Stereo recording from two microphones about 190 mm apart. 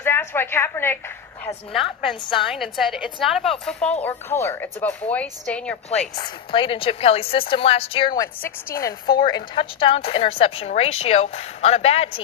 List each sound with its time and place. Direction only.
0.0 s a woman's voice: 10° left (ahead or behind)
1.7 s a woman's voice: centre (ahead or behind)
6.1 s a woman's voice: 25° left (ahead or behind)
8.2 s speech: 15° left (ahead or behind)
9.2 s a woman's voice: 25° left (ahead or behind)